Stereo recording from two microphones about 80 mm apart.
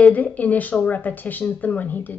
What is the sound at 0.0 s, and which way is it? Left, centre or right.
A woman's voice, centre.